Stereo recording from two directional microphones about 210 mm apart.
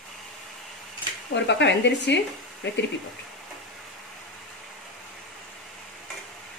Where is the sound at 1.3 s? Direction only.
55° left (ahead or behind).